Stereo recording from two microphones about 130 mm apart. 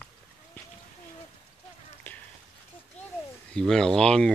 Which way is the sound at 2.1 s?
15° left (ahead or behind).